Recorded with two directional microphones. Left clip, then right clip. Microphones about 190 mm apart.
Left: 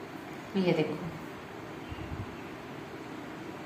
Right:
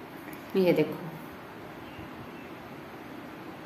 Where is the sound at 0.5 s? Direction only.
65° right (ahead or behind).